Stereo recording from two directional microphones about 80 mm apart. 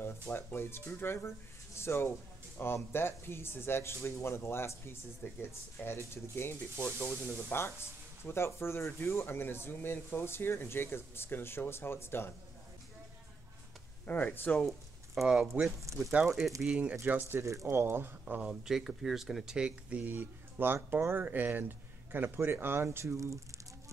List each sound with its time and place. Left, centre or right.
0.0 s speech: left
7.0 s speech: centre
14.0 s speech: left
15.2 s speech: centre
17.6 s speech: right
18.3 s speech: centre; by 23.4 s right